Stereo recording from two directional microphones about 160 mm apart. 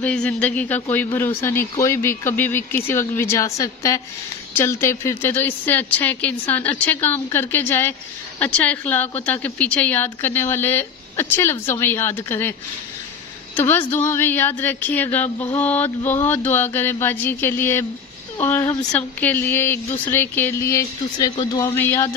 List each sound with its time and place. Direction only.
0.0 s speech: 5° left (ahead or behind)
13.6 s speech: 10° left (ahead or behind)